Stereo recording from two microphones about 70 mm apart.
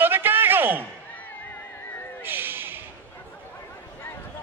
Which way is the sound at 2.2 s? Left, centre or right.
Right.